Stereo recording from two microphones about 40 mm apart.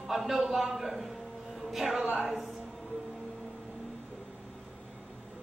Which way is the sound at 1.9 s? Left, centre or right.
Centre.